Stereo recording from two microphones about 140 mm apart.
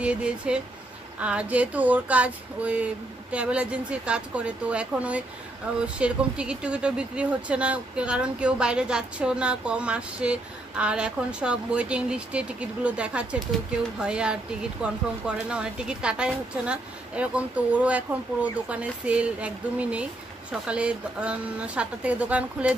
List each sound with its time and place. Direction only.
0.0 s speech: 5° right (ahead or behind)